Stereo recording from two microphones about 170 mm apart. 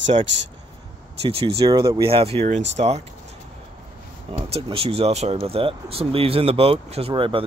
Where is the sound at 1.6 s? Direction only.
20° right (ahead or behind).